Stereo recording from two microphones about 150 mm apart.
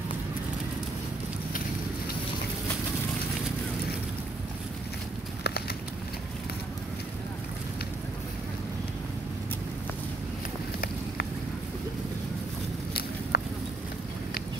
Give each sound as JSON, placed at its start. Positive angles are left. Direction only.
{"t": 13.3, "sound": "clip-clop", "side_deg": 90}